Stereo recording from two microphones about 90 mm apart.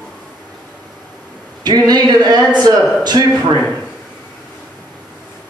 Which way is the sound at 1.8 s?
50° right (ahead or behind).